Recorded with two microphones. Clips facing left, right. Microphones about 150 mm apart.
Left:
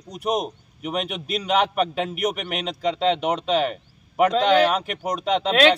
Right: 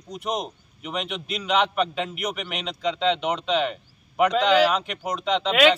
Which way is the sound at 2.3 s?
50° left (ahead or behind).